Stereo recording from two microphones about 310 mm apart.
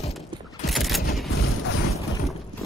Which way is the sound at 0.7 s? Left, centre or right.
Centre.